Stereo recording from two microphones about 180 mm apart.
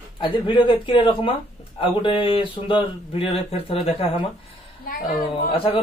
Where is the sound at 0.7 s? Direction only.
30° left (ahead or behind).